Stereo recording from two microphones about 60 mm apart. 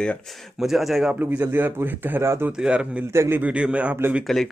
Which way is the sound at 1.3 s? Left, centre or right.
Right.